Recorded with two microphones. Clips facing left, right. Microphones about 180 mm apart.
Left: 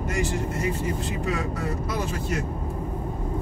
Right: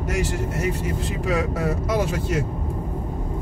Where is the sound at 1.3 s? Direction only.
90° right.